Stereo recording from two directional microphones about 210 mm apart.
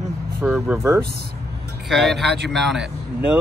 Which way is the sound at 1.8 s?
Centre (ahead or behind).